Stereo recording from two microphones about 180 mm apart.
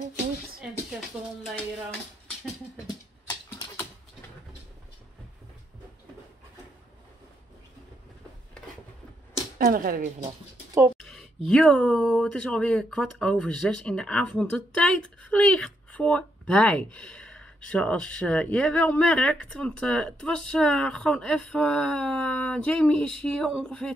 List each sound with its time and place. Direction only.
1.4 s speech: 5° left (ahead or behind)
9.6 s speech: 55° right (ahead or behind)
10.2 s speech: 20° right (ahead or behind)
11.0 s speech: 5° left (ahead or behind)